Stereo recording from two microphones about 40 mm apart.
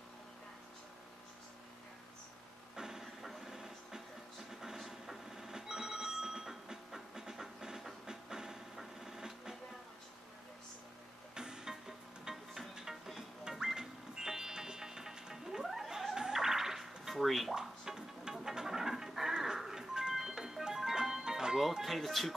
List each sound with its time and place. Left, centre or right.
2.7 s vehicle: centre
3.2 s a sound: centre
4.5 s telephone bell ringing: centre
8.7 s printer: centre
11.3 s music: centre
16.2 s dog: centre
17.6 s music: centre
21.8 s speech: centre